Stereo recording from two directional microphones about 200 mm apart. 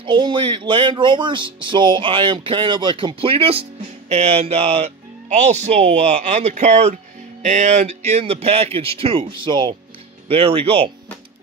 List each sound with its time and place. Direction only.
0.0 s speech: 25° right (ahead or behind)